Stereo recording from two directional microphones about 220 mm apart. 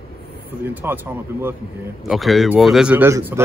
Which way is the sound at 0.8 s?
10° right (ahead or behind).